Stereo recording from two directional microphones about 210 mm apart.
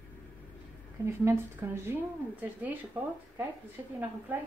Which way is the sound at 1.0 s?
10° right (ahead or behind).